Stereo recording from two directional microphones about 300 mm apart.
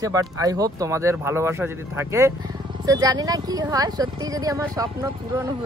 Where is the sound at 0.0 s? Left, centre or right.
Centre.